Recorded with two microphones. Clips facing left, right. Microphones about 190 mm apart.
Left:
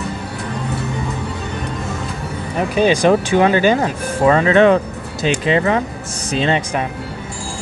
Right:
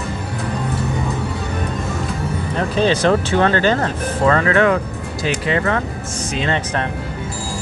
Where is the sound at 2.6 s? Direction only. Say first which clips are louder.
Left 3 dB; 15° left (ahead or behind).